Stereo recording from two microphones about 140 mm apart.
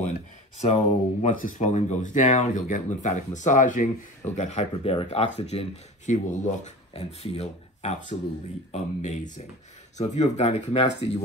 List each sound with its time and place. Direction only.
0.6 s speech: 55° left (ahead or behind)
4.4 s speech: 50° left (ahead or behind)
6.9 s speech: 50° left (ahead or behind)